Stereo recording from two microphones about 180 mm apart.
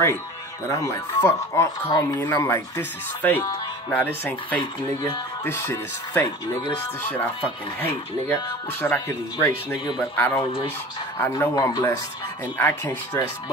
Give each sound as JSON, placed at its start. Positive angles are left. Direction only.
{"t": 0.7, "sound": "speech", "side_deg": 15}
{"t": 8.8, "sound": "speech", "side_deg": 15}